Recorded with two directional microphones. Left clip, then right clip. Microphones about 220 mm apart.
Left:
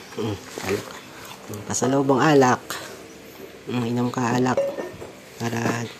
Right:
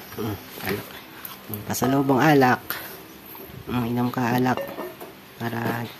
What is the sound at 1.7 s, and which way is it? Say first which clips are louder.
Speech: left 1 dB; 20° right (ahead or behind).